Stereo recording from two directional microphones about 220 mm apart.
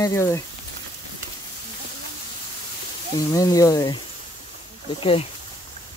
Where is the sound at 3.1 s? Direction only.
15° left (ahead or behind).